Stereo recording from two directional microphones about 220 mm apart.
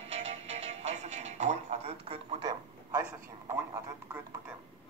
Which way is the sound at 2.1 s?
25° right (ahead or behind).